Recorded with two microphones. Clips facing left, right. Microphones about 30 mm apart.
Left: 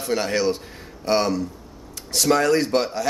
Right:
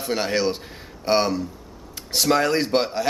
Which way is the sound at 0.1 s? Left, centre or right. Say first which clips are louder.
Left 1 dB; centre.